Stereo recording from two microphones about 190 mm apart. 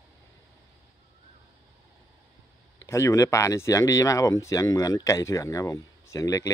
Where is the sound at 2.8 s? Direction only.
15° left (ahead or behind).